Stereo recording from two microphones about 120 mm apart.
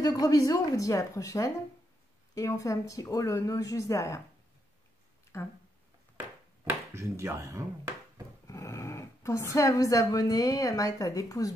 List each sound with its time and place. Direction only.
0.0 s speech: 30° left (ahead or behind)
5.3 s speech: 20° left (ahead or behind)
6.1 s a sound: 20° right (ahead or behind)
8.5 s speech: 25° left (ahead or behind)